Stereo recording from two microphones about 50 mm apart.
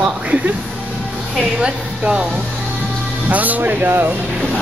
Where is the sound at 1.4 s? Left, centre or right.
Right.